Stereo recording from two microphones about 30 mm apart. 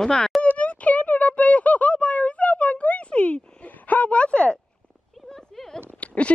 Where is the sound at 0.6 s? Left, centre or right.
Left.